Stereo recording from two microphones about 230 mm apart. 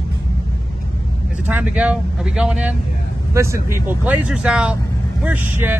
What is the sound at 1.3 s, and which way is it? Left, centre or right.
Speech, centre.